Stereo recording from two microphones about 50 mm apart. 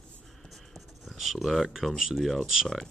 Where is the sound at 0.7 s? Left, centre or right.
Centre.